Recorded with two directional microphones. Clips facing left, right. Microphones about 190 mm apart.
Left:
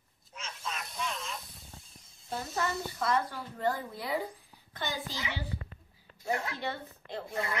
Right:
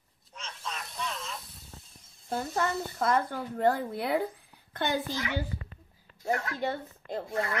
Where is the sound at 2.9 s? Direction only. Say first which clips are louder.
Right 4 dB; 50° right (ahead or behind).